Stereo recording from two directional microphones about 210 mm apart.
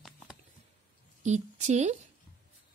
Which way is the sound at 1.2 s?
35° right (ahead or behind).